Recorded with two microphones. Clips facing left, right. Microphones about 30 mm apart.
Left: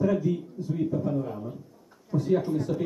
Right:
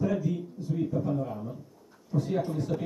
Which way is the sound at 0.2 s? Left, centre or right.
Centre.